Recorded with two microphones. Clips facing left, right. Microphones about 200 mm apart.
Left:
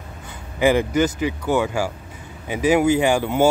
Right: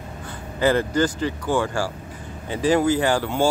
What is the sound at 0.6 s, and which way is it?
Speech, 15° left (ahead or behind).